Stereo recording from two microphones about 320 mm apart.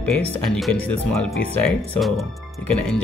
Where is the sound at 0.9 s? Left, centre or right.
Left.